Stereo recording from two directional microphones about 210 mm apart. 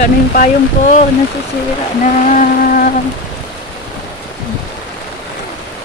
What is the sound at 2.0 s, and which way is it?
Speech, 35° left (ahead or behind).